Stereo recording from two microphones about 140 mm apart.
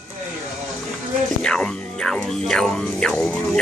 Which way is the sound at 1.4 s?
5° left (ahead or behind).